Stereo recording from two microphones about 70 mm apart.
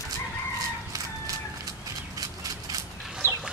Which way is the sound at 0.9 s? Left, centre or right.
Right.